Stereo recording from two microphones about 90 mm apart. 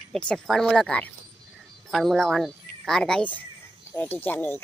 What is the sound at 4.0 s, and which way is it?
Speech, 20° left (ahead or behind).